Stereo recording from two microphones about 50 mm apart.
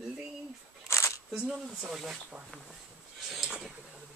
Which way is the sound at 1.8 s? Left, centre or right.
Centre.